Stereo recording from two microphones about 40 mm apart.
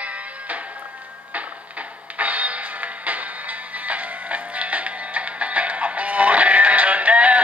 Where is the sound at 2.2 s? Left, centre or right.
Right.